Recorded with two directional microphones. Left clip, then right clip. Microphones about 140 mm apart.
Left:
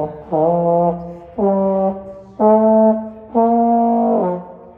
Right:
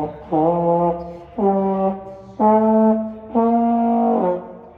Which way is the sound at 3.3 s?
25° left (ahead or behind).